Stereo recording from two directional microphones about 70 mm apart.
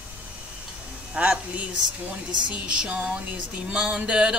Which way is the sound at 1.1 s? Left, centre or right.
Centre.